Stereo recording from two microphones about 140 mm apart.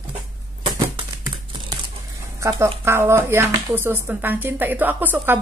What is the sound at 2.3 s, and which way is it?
Speech, 20° right (ahead or behind).